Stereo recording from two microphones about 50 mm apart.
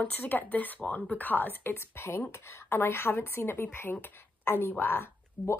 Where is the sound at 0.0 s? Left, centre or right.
Left.